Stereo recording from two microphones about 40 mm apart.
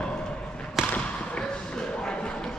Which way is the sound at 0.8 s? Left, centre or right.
Centre.